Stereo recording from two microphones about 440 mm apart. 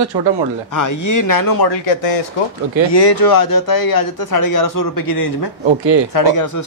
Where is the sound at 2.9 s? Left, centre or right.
Left.